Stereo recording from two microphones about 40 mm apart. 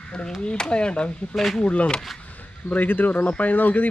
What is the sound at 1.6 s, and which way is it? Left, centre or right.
Speech, left.